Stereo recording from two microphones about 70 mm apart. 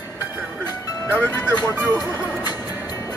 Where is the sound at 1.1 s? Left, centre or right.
Left.